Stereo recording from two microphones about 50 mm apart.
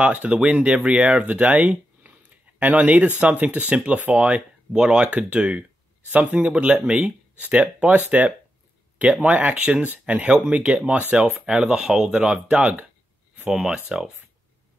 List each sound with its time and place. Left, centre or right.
0.0 s speech: right
10.3 s speech: centre; by 11.3 s right
11.3 s speech: centre
12.3 s speech: right